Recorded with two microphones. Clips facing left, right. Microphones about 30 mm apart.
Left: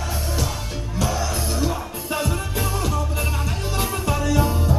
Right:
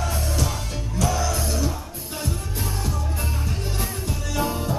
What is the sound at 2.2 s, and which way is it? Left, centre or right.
Music, left.